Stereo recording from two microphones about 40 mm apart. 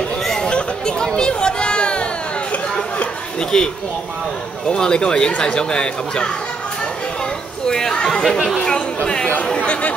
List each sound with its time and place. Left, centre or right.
0.2 s chatter: centre
0.5 s chatter: left
3.3 s speech: centre
7.6 s chatter: centre
8.0 s speech: centre
8.6 s chatter: centre
9.5 s speech: left